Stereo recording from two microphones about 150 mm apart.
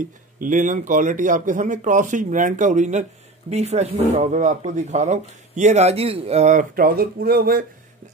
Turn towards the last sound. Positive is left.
turn(degrees=-80)